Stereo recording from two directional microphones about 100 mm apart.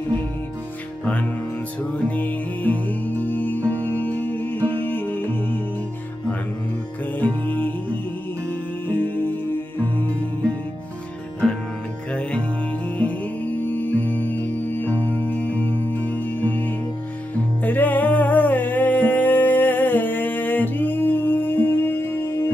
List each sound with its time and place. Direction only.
2.0 s music: 15° left (ahead or behind)
7.4 s music: 20° left (ahead or behind)